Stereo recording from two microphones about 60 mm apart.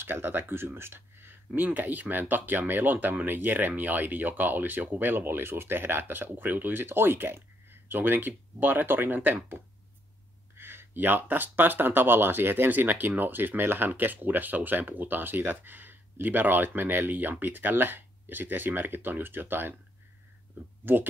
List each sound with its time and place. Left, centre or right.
0.0 s speech: right
10.6 s speech: right
20.8 s speech: right